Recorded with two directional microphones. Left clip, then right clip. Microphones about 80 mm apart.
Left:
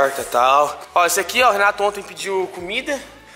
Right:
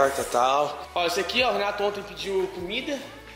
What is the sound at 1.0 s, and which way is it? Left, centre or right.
Speech, left.